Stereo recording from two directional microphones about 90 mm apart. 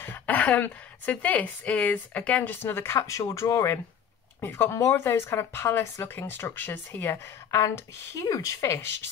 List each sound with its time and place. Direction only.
0.0 s speech: 20° left (ahead or behind)